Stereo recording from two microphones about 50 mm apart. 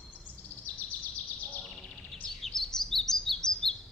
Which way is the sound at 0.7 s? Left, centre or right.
Left.